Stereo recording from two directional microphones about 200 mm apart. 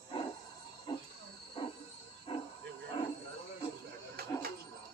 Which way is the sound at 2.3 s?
25° left (ahead or behind).